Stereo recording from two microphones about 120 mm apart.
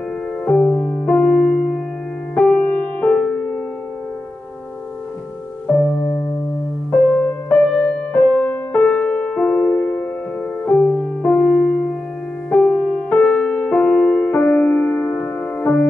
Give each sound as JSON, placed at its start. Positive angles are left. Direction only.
{"t": 0.5, "sound": "music", "side_deg": 10}
{"t": 5.8, "sound": "music", "side_deg": 15}
{"t": 11.2, "sound": "music", "side_deg": 10}